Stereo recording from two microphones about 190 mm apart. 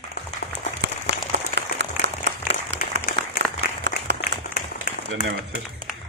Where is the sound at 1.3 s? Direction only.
65° right (ahead or behind).